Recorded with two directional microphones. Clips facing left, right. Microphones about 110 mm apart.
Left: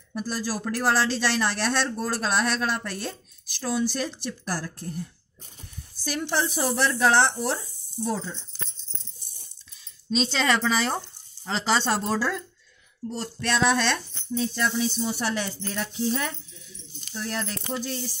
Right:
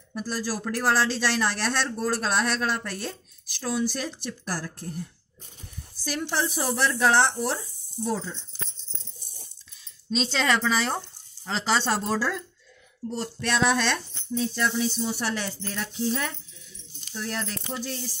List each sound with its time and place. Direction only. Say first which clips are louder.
0.1 s speech: left 1 dB; centre (ahead or behind)
6.0 s speech: left 1 dB; centre (ahead or behind)
10.1 s speech: left 1 dB; centre (ahead or behind)
13.1 s speech: even; 10° right (ahead or behind)